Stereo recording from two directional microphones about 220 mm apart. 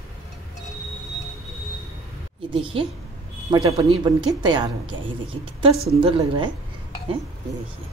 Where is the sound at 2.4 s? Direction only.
20° right (ahead or behind).